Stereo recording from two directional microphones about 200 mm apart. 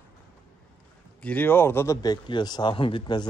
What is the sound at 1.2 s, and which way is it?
Speech, 10° left (ahead or behind).